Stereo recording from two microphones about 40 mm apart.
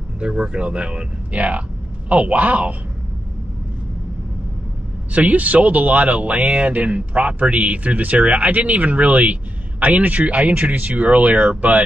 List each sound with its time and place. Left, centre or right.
0.2 s speech: right
1.3 s speech: right
5.1 s speech: right